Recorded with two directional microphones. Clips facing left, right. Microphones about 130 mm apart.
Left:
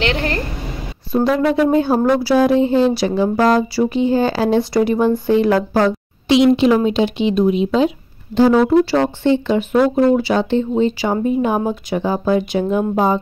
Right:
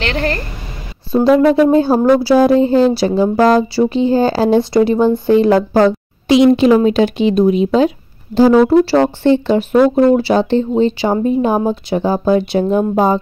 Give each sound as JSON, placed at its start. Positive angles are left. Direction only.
{"t": 0.0, "sound": "a woman's voice", "side_deg": 10}
{"t": 1.5, "sound": "speech", "side_deg": -30}
{"t": 6.2, "sound": "a woman's voice", "side_deg": -45}